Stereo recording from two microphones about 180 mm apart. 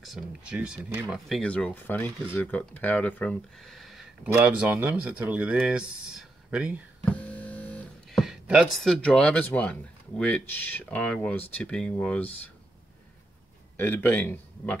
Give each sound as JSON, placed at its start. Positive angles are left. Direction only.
{"t": 0.0, "sound": "speech", "side_deg": -5}
{"t": 1.1, "sound": "speech", "side_deg": 0}
{"t": 7.2, "sound": "speech", "side_deg": 10}
{"t": 13.7, "sound": "speech", "side_deg": 10}